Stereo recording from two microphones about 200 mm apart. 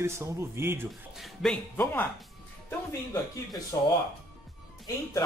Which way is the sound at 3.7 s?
15° left (ahead or behind).